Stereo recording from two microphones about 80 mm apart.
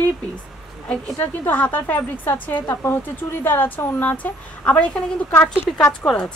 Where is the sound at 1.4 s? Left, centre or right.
Left.